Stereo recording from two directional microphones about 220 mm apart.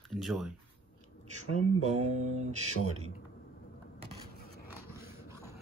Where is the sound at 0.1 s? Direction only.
Centre (ahead or behind).